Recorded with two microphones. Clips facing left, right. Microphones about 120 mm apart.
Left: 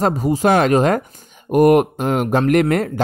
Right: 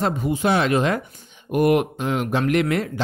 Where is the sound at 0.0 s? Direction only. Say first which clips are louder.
Left 5 dB; 40° left (ahead or behind).